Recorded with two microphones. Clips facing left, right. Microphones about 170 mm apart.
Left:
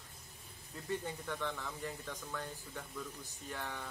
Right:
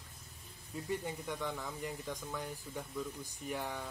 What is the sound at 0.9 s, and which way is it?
Speech, 10° right (ahead or behind).